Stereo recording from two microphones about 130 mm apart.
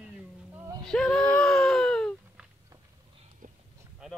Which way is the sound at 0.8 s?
5° left (ahead or behind).